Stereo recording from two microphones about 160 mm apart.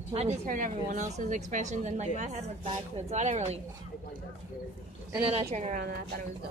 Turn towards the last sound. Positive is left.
turn(degrees=-45)  # may be behind; listen again after turning